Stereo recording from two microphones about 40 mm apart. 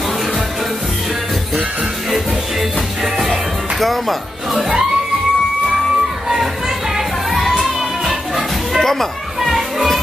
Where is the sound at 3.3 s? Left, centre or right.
Centre.